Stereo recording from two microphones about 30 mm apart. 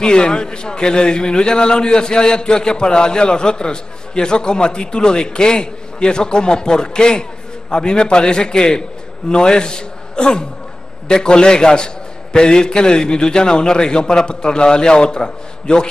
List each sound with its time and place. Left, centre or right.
0.0 s a man's voice: left